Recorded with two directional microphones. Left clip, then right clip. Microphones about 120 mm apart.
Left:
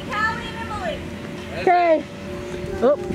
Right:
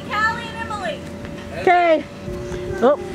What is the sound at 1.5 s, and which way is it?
Speech, 15° right (ahead or behind).